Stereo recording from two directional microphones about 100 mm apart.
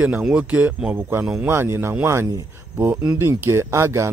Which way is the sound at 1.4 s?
25° right (ahead or behind).